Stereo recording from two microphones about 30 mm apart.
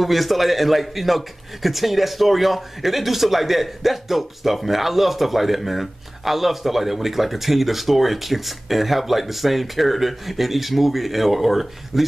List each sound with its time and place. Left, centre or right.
0.0 s a man's voice: centre